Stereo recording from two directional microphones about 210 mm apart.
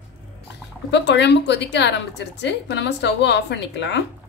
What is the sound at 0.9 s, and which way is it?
A woman's voice, 55° left (ahead or behind).